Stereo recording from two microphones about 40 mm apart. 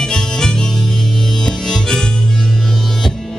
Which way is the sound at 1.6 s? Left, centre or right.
Centre.